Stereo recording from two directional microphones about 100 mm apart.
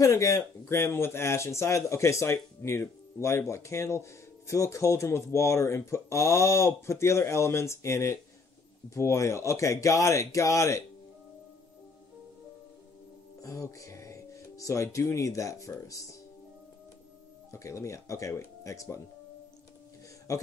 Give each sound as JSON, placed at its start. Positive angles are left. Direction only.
{"t": 0.0, "sound": "a man's voice", "side_deg": 30}
{"t": 13.4, "sound": "speech", "side_deg": 35}
{"t": 17.5, "sound": "speech", "side_deg": 30}
{"t": 20.3, "sound": "speech", "side_deg": 35}